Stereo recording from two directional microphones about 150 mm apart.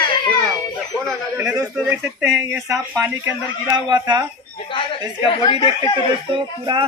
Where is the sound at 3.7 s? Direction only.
30° right (ahead or behind).